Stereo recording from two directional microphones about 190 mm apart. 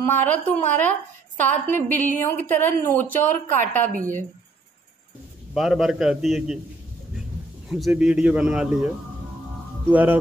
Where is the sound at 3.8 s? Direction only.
45° right (ahead or behind).